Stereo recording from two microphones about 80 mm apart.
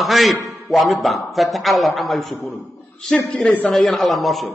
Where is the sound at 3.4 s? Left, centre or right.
Centre.